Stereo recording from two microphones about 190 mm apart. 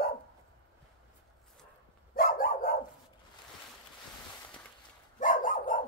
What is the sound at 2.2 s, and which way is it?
Dog, 45° left (ahead or behind).